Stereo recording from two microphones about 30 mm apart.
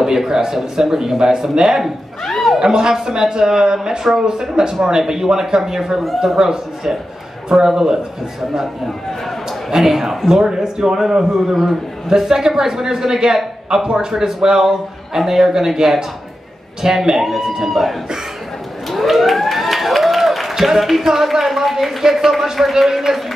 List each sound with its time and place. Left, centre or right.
0.0 s a man's voice: centre
2.2 s a sound: centre
2.6 s a man's voice: right
9.8 s a man's voice: centre